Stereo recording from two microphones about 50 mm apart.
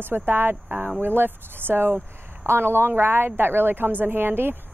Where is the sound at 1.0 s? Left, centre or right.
Right.